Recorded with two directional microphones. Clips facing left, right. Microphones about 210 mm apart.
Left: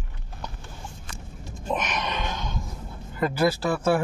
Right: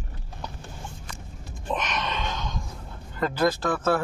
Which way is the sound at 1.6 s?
10° left (ahead or behind).